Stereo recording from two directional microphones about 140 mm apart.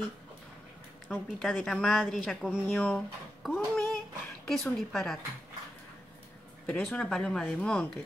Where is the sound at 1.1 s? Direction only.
5° left (ahead or behind).